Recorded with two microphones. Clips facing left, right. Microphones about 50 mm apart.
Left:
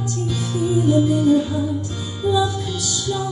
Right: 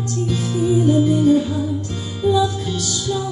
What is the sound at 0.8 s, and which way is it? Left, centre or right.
Music, right.